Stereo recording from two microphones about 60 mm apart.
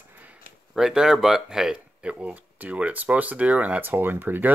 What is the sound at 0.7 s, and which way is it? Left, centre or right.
Speech, centre.